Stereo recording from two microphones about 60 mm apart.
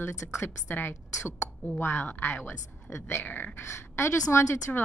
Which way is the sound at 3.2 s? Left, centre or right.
Left.